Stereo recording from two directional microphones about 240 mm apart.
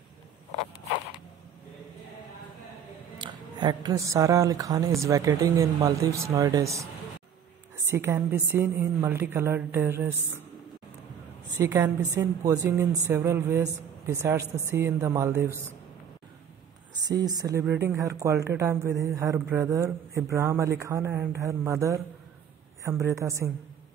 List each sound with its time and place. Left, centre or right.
3.2 s speech: centre
11.5 s a woman's voice: centre
17.4 s speech: centre